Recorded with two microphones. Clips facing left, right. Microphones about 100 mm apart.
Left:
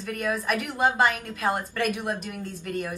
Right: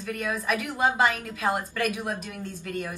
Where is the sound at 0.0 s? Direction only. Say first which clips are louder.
Left 2 dB; centre (ahead or behind).